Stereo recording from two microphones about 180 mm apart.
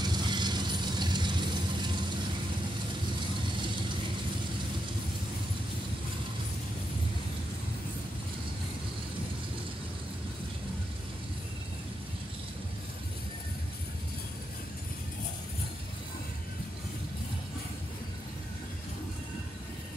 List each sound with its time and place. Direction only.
0.0 s vehicle: 25° right (ahead or behind)